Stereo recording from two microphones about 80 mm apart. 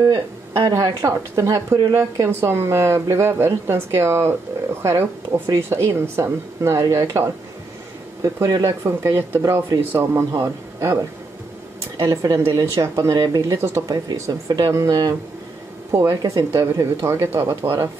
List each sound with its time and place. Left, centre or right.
0.0 s a woman's voice: right
8.6 s a woman's voice: right
13.8 s a woman's voice: right